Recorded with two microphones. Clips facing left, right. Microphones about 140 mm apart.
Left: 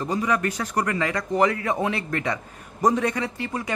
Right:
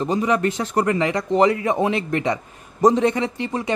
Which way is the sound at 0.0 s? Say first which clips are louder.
Right 4 dB; 20° right (ahead or behind).